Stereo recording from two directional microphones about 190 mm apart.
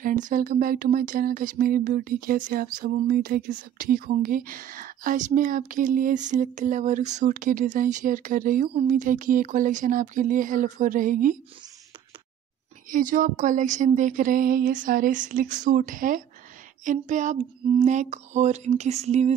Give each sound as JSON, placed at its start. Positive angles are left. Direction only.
{"t": 0.0, "sound": "speech", "side_deg": -45}
{"t": 12.9, "sound": "speech", "side_deg": -45}
{"t": 16.8, "sound": "a sound", "side_deg": -40}